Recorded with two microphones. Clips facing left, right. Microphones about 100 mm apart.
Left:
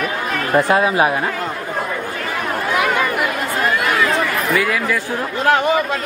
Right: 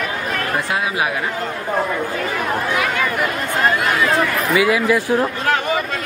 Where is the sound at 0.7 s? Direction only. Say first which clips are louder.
Left 6 dB; 40° left (ahead or behind).